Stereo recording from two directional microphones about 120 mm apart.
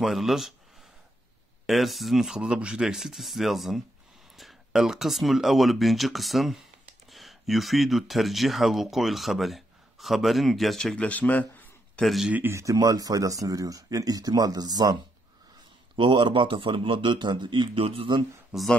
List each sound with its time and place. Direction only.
0.0 s speech: centre (ahead or behind)
1.7 s speech: centre (ahead or behind); by 11.7 s 15° left (ahead or behind)
12.0 s speech: centre (ahead or behind)
12.3 s a man's voice: 20° right (ahead or behind); by 18.1 s 50° right (ahead or behind)
18.5 s speech: centre (ahead or behind)